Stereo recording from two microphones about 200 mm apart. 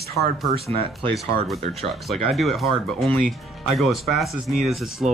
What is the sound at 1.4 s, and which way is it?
Speech, centre (ahead or behind).